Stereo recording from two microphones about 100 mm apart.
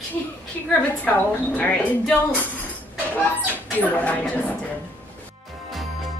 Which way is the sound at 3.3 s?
15° left (ahead or behind).